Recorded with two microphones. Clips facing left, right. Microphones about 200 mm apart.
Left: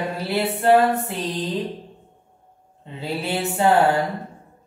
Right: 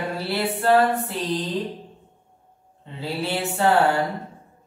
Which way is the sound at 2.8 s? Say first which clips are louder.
Even; 20° left (ahead or behind).